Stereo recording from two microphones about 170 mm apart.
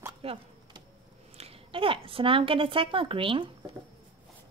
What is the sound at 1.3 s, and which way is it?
A woman's voice, 35° right (ahead or behind).